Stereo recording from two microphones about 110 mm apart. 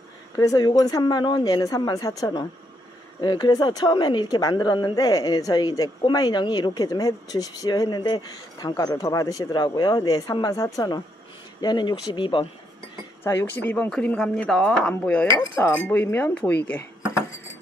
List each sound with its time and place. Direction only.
0.4 s speech: 35° left (ahead or behind)
13.2 s speech: 20° left (ahead or behind)
15.2 s speech: 25° left (ahead or behind)